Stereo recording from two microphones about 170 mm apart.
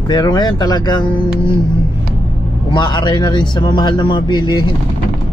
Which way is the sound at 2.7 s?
25° left (ahead or behind).